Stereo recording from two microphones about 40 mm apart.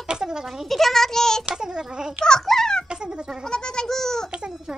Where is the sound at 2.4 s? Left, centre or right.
Centre.